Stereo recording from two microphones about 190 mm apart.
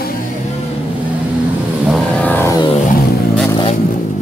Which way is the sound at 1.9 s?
5° left (ahead or behind).